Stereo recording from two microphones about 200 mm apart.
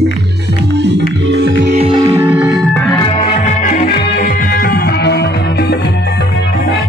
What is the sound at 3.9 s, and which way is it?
Music, 50° left (ahead or behind).